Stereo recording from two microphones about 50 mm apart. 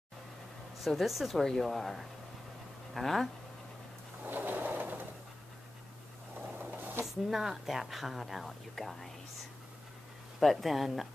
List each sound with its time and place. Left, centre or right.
0.7 s speech: centre
1.4 s speech: centre
4.2 s drawer open or close: right
6.4 s a sound: right
7.2 s speech: centre
10.4 s speech: centre